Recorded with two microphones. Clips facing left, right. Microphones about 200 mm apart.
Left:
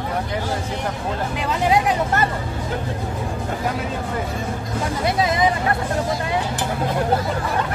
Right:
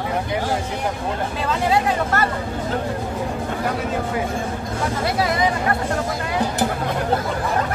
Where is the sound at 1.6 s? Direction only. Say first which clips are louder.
Left 2 dB; 20° left (ahead or behind).